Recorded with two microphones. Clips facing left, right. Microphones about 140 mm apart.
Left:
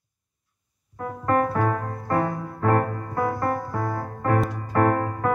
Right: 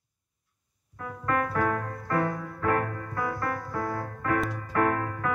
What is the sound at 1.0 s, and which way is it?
Music, 35° left (ahead or behind).